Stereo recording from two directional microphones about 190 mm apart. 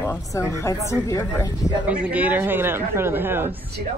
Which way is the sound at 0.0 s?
15° left (ahead or behind).